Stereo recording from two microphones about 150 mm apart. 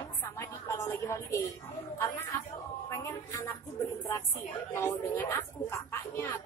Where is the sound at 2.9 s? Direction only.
20° left (ahead or behind).